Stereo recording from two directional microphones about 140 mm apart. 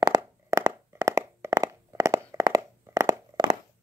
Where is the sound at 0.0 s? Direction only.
25° right (ahead or behind).